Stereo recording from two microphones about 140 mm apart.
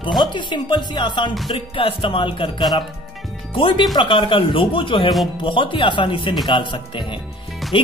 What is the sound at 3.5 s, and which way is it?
Speech, 40° left (ahead or behind).